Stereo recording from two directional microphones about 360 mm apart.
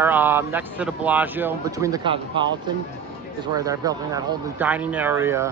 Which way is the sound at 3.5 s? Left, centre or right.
Centre.